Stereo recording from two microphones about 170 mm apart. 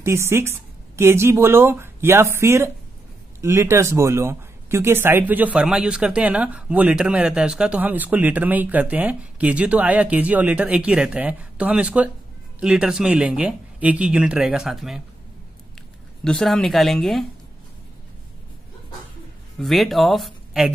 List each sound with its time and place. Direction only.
0.0 s speech: 15° right (ahead or behind)
16.3 s speech: 5° left (ahead or behind)
19.6 s speech: centre (ahead or behind)